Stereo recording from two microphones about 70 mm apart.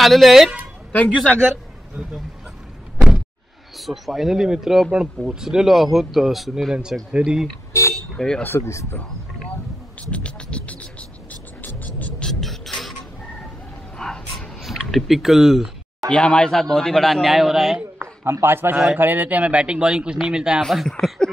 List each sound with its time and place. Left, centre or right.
0.0 s speech: centre
0.9 s a man's voice: centre
3.7 s speech: centre
6.7 s speech: centre
7.7 s speech: left
8.4 s speech: left
10.1 s a sound: centre
11.6 s music: left
12.2 s music: centre
13.9 s dog: centre
14.6 s speech: centre
16.1 s speech: centre
18.2 s a man's voice: right; by 20.6 s centre
20.6 s speech: centre